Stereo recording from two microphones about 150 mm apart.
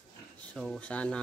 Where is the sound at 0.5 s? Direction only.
Centre (ahead or behind).